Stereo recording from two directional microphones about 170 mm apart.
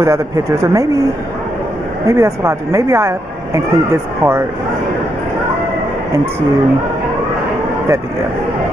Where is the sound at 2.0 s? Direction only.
15° right (ahead or behind).